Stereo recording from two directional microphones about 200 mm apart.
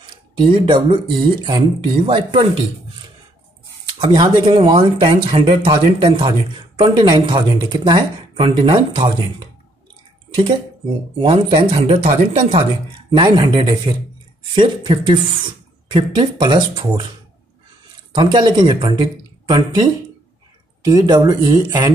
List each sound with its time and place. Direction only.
0.4 s speech: 25° right (ahead or behind)
4.0 s speech: 20° right (ahead or behind)
11.1 s speech: 25° right (ahead or behind)
18.1 s speech: 20° right (ahead or behind)